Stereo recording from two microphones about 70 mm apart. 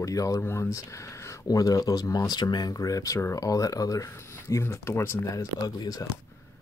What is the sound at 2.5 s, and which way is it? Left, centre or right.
Speech, left.